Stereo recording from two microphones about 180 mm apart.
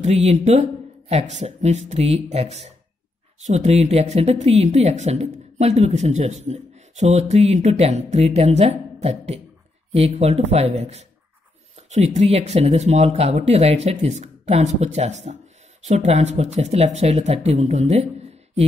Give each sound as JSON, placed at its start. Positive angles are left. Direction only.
{"t": 0.0, "sound": "speech", "side_deg": -40}